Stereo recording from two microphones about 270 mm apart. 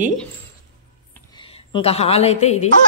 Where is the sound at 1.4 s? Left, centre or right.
Centre.